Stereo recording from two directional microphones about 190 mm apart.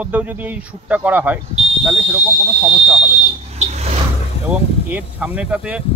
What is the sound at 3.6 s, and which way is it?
Vehicle, 35° right (ahead or behind).